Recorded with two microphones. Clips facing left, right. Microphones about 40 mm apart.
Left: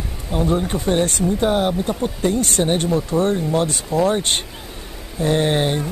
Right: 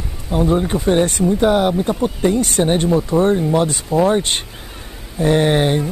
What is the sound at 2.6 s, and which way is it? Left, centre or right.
Speech, centre.